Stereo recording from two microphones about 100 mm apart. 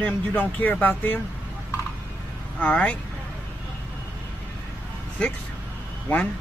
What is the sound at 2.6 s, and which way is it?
Speech, 15° left (ahead or behind).